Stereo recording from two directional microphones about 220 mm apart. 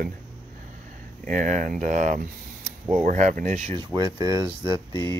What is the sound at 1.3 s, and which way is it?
Speech, 35° right (ahead or behind).